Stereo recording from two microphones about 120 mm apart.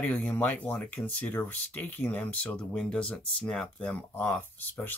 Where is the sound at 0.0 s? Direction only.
10° left (ahead or behind).